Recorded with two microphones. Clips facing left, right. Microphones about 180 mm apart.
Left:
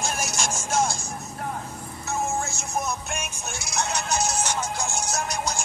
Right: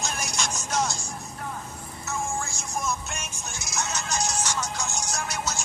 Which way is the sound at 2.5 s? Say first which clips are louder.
Left 2 dB; 60° left (ahead or behind).